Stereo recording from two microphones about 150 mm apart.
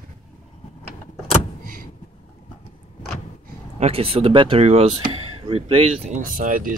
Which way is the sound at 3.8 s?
40° right (ahead or behind).